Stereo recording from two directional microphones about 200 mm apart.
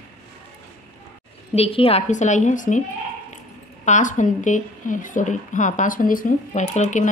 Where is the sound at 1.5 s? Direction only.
30° left (ahead or behind).